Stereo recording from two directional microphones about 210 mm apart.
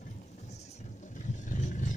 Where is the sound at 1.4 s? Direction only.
35° left (ahead or behind).